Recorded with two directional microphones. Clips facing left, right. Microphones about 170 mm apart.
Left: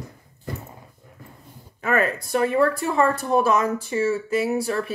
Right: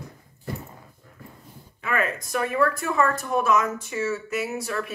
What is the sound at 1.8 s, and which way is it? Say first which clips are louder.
Speech: left 4 dB; 40° left (ahead or behind).